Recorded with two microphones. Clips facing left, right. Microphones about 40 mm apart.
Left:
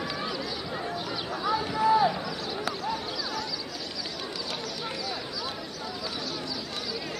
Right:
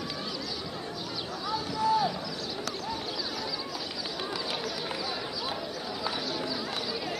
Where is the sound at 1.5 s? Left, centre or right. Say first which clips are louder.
Left 4 dB; left.